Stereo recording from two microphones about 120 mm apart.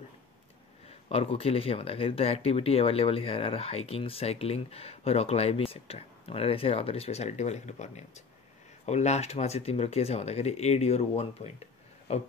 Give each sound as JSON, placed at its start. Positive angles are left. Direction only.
{"t": 0.8, "sound": "speech", "side_deg": 55}